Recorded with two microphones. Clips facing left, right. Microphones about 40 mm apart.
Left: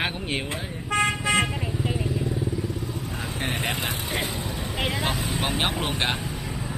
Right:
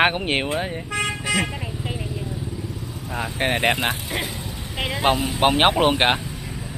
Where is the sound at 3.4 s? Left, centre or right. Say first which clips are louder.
Right 7 dB; right.